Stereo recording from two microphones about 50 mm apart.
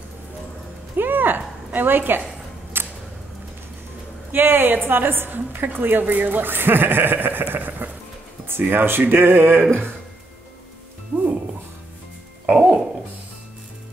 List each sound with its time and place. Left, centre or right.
0.9 s a sound: right
1.7 s a woman's voice: right
2.8 s music: right
4.3 s a woman's voice: right
8.5 s a woman's voice: right
12.4 s music: centre